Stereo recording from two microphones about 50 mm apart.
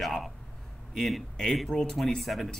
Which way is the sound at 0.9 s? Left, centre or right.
Centre.